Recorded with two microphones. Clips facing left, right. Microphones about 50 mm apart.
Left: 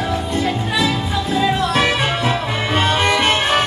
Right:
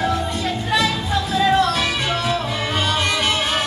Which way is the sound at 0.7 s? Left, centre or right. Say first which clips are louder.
Right 3 dB; left.